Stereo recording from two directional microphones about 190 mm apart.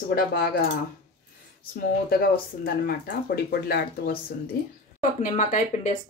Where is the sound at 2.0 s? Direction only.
50° left (ahead or behind).